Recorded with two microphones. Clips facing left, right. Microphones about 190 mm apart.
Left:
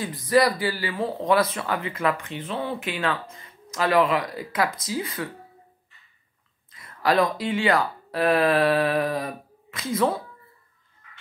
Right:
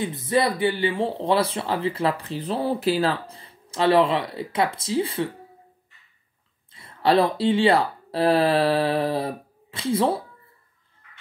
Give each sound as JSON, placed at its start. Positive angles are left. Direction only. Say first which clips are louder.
{"t": 0.0, "sound": "speech", "louder": "left 2 dB", "side_deg": -25}
{"t": 6.7, "sound": "speech", "louder": "right 3 dB", "side_deg": -30}